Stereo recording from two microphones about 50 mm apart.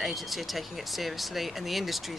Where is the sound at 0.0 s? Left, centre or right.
Centre.